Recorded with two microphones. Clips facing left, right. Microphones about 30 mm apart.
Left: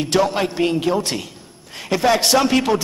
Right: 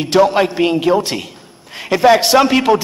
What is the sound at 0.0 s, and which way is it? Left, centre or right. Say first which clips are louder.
A man's voice: right 6 dB; centre.